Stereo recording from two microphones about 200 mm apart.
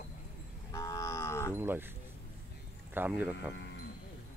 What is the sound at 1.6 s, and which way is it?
Speech, 10° right (ahead or behind).